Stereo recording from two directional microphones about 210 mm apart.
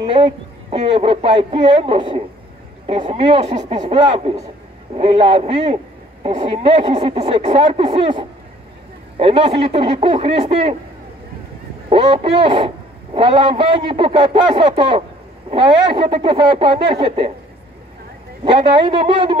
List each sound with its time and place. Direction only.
0.0 s speech: 25° right (ahead or behind)
11.9 s speech: 25° right (ahead or behind)
18.4 s speech: 25° right (ahead or behind)